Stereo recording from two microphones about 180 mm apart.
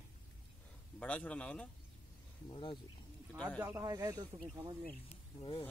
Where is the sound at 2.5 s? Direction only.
30° left (ahead or behind).